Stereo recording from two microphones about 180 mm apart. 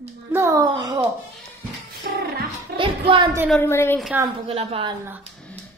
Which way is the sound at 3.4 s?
10° left (ahead or behind).